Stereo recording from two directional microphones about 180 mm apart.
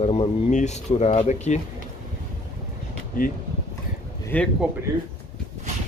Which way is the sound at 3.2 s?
50° left (ahead or behind).